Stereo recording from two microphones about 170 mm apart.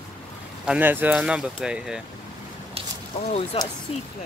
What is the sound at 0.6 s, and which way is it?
Speech, 10° right (ahead or behind).